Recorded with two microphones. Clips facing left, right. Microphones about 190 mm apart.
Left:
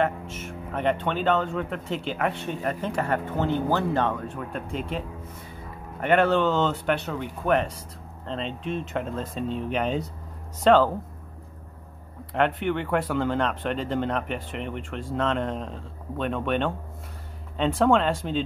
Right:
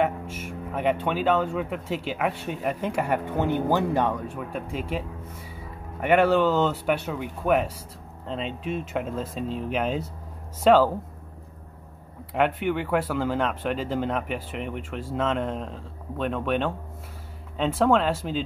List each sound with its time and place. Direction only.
0.0 s speech: 10° right (ahead or behind)
12.4 s speech: 5° right (ahead or behind)